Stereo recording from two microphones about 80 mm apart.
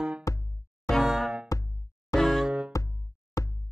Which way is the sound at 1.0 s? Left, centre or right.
Centre.